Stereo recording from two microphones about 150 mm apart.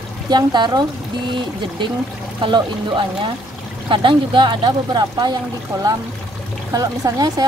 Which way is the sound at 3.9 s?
35° right (ahead or behind).